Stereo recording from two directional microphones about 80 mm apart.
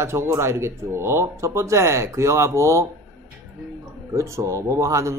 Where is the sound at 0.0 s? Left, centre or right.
Right.